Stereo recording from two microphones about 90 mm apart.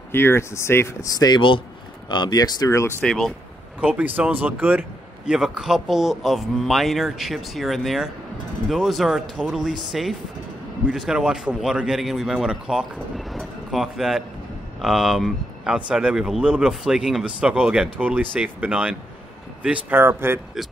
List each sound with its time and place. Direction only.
0.1 s speech: 25° left (ahead or behind)
2.0 s speech: 55° left (ahead or behind); by 3.0 s 35° left (ahead or behind)
3.0 s a man's voice: 5° left (ahead or behind)
3.8 s a man's voice: 15° right (ahead or behind)
20.0 s speech: 25° right (ahead or behind)